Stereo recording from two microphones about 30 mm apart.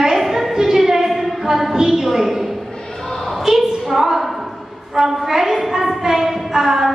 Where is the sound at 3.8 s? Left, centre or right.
Centre.